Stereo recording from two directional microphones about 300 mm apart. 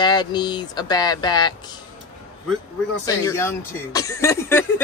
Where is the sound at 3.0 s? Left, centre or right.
Centre.